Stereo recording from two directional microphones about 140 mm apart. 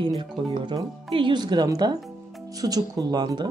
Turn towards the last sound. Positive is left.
turn(degrees=-30)  # may be behind; listen again after turning